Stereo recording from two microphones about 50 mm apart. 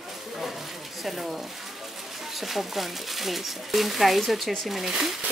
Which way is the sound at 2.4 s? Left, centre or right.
Centre.